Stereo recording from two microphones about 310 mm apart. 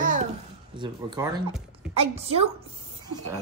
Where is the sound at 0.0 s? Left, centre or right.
Right.